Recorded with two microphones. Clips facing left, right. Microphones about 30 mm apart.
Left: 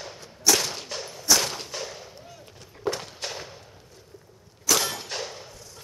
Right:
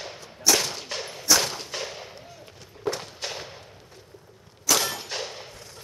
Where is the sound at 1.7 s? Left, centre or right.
Centre.